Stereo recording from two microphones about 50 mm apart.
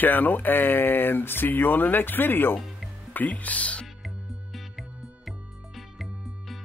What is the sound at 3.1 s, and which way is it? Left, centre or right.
Speech, left.